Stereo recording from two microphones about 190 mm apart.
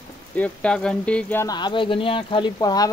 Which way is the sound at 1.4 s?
20° left (ahead or behind).